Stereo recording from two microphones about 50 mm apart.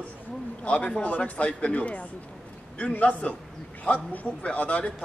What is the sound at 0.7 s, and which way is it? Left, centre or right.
A man's voice, left.